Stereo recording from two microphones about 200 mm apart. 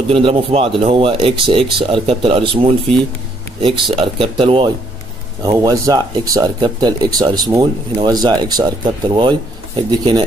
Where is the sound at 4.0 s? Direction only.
25° right (ahead or behind).